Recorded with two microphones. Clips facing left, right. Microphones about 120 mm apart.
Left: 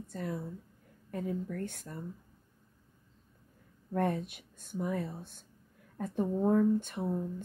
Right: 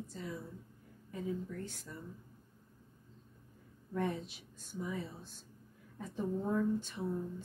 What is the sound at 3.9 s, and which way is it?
Speech, 55° left (ahead or behind).